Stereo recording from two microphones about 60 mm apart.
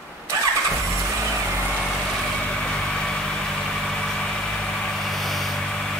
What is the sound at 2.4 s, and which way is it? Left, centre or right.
Vehicle, centre.